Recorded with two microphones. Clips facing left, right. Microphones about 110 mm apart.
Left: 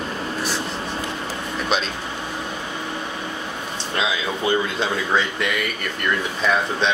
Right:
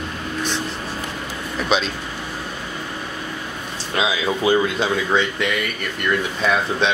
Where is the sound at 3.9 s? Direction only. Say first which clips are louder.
Right 3 dB; 5° right (ahead or behind).